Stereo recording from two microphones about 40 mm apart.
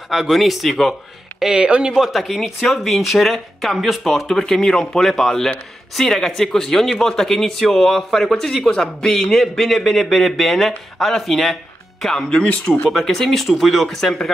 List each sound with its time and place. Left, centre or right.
0.1 s speech: centre
1.4 s speech: centre
4.4 s speech: centre
5.0 s speech: centre
12.3 s speech: left
12.9 s speech: centre